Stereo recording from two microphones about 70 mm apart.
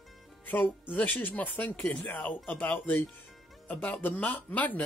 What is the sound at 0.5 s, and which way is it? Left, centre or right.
Speech, left.